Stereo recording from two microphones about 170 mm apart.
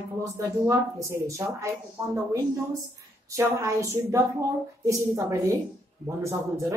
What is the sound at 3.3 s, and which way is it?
A woman's voice, 20° right (ahead or behind).